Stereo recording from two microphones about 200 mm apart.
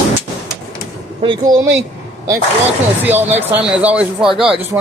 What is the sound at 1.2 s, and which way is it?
Speech, 20° right (ahead or behind).